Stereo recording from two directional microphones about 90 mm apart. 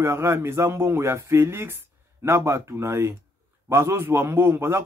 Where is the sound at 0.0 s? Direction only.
30° right (ahead or behind).